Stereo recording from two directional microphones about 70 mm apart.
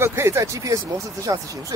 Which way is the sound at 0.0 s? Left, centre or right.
Right.